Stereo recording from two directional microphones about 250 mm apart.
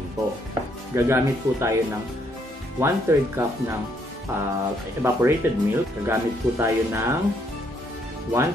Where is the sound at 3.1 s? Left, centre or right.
Centre.